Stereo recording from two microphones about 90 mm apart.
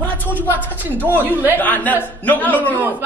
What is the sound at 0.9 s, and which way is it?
Speech, 20° left (ahead or behind).